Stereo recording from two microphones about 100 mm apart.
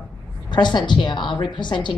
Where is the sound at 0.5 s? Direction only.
50° left (ahead or behind).